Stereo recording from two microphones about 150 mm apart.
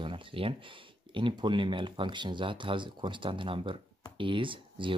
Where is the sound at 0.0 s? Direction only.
35° right (ahead or behind).